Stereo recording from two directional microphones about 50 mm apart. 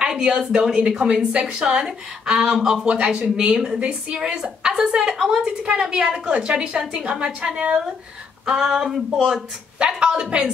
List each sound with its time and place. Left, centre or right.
0.0 s a woman's voice: centre
5.7 s a woman's voice: right